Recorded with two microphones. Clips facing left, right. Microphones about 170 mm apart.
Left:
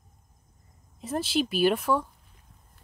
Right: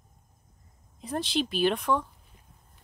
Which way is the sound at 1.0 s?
5° left (ahead or behind).